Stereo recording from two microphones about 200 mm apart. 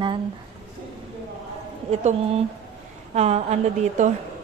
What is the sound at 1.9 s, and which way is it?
A woman's voice, 30° right (ahead or behind).